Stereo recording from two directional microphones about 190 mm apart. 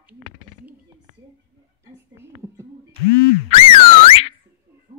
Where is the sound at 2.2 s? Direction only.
15° right (ahead or behind).